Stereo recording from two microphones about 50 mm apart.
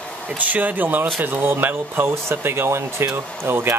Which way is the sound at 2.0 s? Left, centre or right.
Right.